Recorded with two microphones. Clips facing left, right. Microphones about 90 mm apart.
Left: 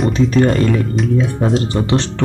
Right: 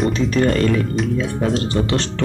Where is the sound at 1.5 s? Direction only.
15° left (ahead or behind).